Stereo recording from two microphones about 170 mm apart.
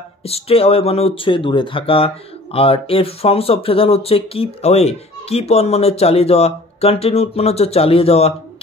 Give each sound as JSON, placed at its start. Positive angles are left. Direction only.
{"t": 0.2, "sound": "speech", "side_deg": 35}